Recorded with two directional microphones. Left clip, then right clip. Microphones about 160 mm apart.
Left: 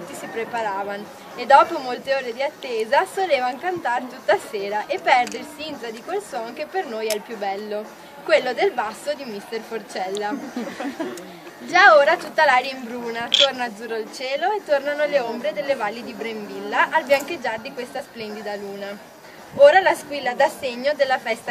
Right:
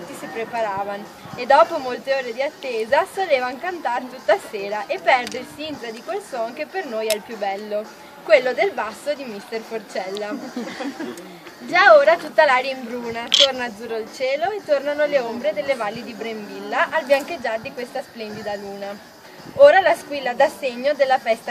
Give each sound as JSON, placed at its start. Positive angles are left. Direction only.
{"t": 0.4, "sound": "a woman's voice", "side_deg": 20}
{"t": 11.7, "sound": "a woman's voice", "side_deg": 20}